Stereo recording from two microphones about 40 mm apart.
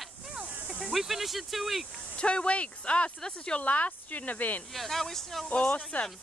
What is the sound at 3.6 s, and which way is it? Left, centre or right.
Speech, left.